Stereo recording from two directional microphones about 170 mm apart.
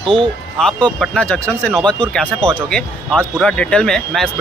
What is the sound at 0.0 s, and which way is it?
Speech, 30° right (ahead or behind).